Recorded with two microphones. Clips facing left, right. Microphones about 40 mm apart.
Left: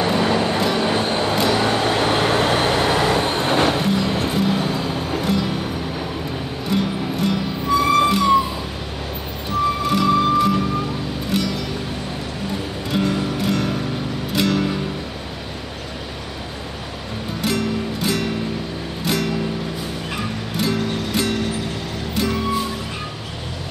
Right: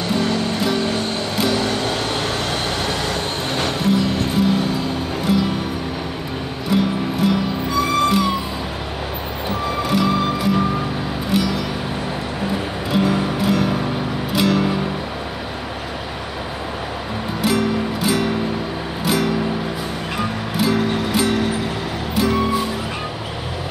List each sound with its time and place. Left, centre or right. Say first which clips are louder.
0.0 s music: left 2 dB; centre
1.4 s vehicle: right 1 dB; centre
6.7 s music: right 3 dB; centre
9.8 s music: even; centre
12.9 s music: right 2 dB; centre
17.4 s music: right 3 dB; centre